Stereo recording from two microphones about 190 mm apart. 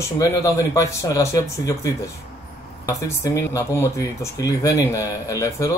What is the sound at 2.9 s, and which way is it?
Speech, 15° left (ahead or behind).